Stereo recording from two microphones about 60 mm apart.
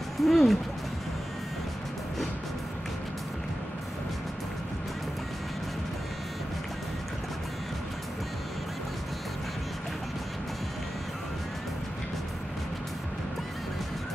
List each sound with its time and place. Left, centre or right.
0.2 s speech: centre